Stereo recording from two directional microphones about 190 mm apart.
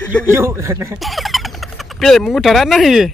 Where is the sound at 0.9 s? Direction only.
Centre (ahead or behind).